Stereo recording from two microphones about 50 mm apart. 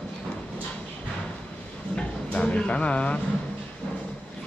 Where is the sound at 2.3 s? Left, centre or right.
Left.